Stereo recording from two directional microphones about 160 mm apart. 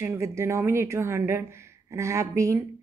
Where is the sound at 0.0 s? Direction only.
15° right (ahead or behind).